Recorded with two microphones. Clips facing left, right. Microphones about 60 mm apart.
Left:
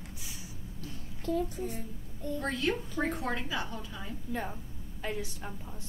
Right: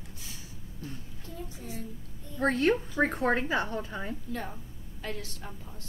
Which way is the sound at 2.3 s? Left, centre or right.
Right.